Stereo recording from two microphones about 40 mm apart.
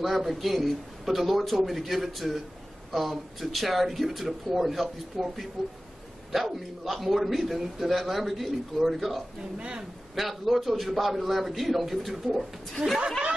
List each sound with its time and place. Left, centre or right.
0.0 s speech: centre
9.6 s a man's voice: right
10.1 s speech: centre